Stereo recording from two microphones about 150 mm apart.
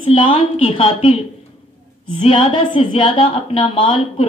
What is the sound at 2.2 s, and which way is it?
A woman's voice, 35° left (ahead or behind).